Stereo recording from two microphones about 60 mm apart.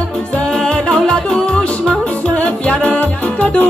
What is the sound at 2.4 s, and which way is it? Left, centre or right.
Music, left.